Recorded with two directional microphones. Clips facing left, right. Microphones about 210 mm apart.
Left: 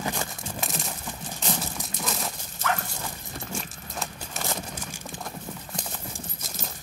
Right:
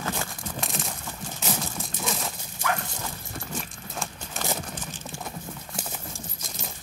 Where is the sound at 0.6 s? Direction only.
Centre (ahead or behind).